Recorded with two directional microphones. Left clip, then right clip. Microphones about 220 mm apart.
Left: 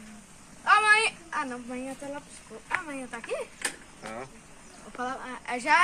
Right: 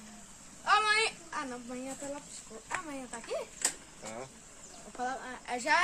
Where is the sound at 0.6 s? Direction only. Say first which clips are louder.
Left 6 dB; centre (ahead or behind).